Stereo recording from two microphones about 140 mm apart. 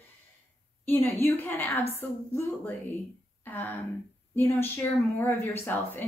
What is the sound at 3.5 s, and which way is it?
A woman's voice, 15° left (ahead or behind).